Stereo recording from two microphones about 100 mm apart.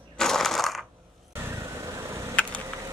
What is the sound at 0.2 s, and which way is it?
Mechanisms, 5° left (ahead or behind).